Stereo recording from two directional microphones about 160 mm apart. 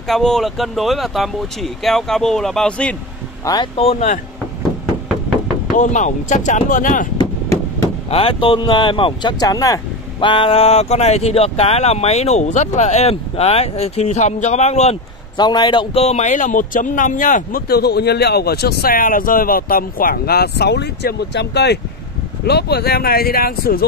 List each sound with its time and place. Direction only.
0.0 s speech: centre (ahead or behind)
3.7 s speech: 40° left (ahead or behind)
5.8 s speech: 50° left (ahead or behind)
7.2 s a sound: 20° left (ahead or behind)
8.1 s speech: 35° left (ahead or behind)
10.2 s speech: 35° left (ahead or behind)
15.3 s a man's voice: 25° left (ahead or behind); by 23.9 s 70° left (ahead or behind)